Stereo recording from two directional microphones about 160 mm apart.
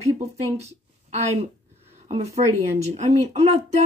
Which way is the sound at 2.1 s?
40° right (ahead or behind).